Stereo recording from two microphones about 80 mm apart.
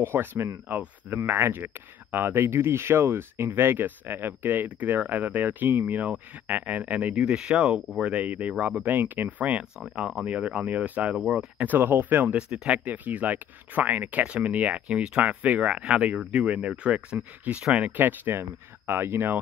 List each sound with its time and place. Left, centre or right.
0.0 s speech: right; by 10.2 s centre
10.2 s speech: centre
11.6 s speech: right
12.4 s speech: centre; by 19.3 s right